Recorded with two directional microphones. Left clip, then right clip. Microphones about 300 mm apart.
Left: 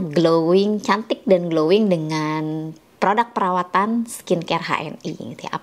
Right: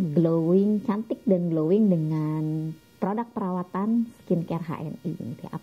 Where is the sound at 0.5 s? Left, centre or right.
Centre.